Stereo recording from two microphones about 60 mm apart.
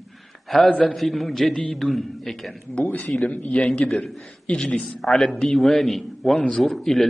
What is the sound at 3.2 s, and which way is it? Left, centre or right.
Speech, left.